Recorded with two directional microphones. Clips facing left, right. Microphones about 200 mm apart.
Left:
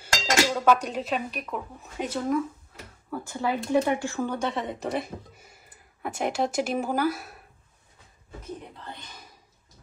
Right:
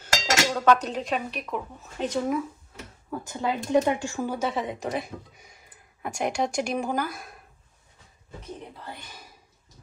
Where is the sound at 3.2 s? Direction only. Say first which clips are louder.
Left 1 dB; 20° right (ahead or behind).